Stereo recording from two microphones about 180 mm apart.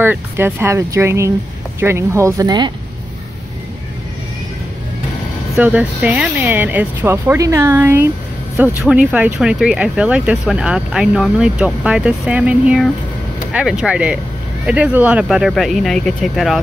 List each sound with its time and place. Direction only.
0.0 s speech: 10° right (ahead or behind)
5.6 s speech: 10° right (ahead or behind)